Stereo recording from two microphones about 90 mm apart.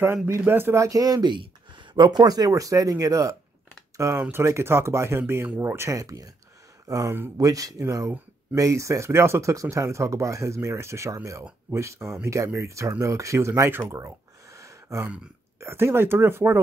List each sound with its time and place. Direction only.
0.5 s speech: 25° right (ahead or behind)
0.8 s speech: 45° right (ahead or behind)
3.9 s a sound: 35° right (ahead or behind)
4.2 s speech: 30° right (ahead or behind)
13.8 s a sound: 35° right (ahead or behind)
15.6 s speech: 25° right (ahead or behind)